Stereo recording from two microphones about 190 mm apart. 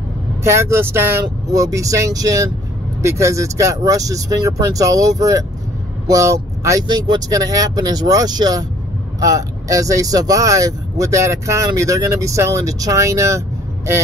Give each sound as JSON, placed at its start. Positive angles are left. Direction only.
{"t": 0.4, "sound": "speech", "side_deg": -15}